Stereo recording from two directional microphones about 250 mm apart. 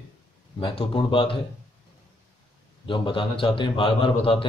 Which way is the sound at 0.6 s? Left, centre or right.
Left.